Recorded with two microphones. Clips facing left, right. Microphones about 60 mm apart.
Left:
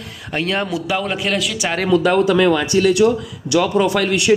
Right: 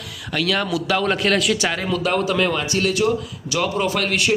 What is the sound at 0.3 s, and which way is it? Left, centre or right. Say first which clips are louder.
Speech: left 1 dB; left.